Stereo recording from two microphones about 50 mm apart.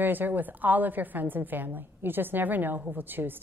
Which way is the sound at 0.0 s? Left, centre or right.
Right.